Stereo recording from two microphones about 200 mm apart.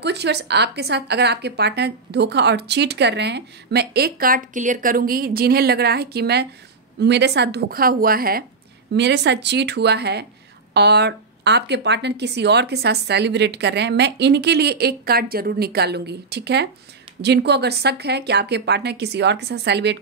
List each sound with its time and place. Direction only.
0.0 s a woman's voice: 55° right (ahead or behind)
8.9 s a woman's voice: 60° right (ahead or behind)